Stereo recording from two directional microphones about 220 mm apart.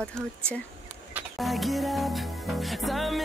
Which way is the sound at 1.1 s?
Centre (ahead or behind).